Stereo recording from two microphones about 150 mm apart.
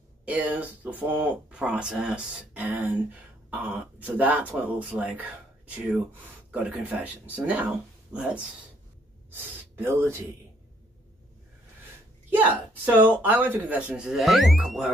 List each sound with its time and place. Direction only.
0.2 s speech: 10° right (ahead or behind)
6.5 s speech: 5° right (ahead or behind)
12.3 s speech: 10° right (ahead or behind)